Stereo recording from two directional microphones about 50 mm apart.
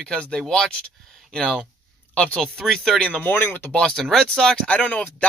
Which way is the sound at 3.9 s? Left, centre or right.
Centre.